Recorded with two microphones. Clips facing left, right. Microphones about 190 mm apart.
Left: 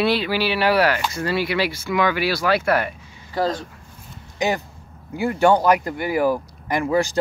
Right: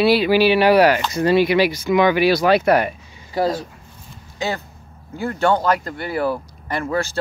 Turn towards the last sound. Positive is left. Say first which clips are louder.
# left 3 dB
turn(degrees=15)  # may be behind; listen again after turning